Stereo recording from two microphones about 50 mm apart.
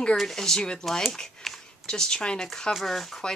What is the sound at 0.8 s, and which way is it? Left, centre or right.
Speech, centre.